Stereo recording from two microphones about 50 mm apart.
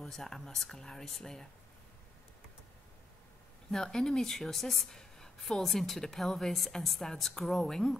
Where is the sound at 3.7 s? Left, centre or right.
Centre.